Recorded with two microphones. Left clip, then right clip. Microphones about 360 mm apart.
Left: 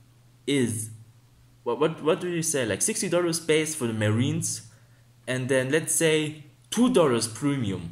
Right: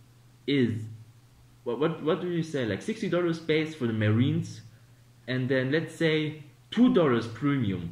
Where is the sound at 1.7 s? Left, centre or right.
Centre.